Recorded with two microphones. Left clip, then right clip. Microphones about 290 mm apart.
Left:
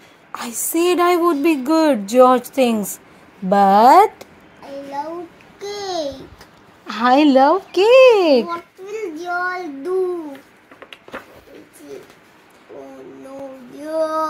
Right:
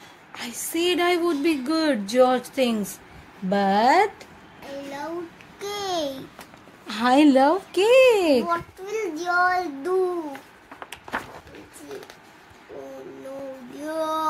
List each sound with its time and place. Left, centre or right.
0.3 s a woman's voice: centre
5.8 s babbling: right
6.9 s speech: centre
8.5 s a child's voice: centre
13.7 s female singing: centre